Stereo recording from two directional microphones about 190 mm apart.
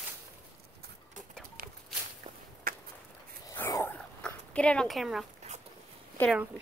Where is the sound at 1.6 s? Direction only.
50° right (ahead or behind).